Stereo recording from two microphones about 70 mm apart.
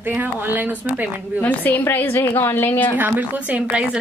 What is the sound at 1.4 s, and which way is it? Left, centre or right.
A woman's voice, left.